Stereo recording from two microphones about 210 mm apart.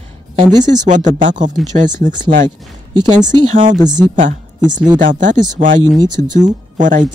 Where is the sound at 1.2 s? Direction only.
35° right (ahead or behind).